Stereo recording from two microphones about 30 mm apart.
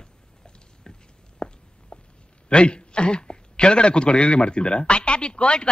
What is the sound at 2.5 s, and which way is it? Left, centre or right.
A man's voice, left.